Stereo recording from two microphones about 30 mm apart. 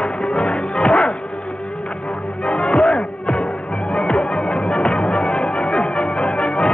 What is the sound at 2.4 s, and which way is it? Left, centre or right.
Music, left.